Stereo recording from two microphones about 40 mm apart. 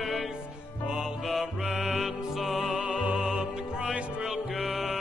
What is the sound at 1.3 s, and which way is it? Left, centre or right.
Music, centre.